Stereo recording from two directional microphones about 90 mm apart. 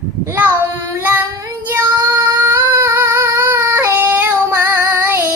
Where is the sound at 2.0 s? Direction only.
35° right (ahead or behind).